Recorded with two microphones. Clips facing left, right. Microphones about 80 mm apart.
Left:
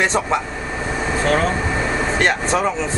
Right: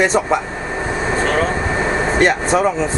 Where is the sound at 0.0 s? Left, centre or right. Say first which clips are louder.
Right 3 dB; centre.